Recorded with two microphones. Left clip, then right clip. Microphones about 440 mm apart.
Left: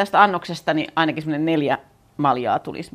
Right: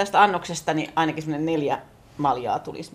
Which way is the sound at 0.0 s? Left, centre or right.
Left.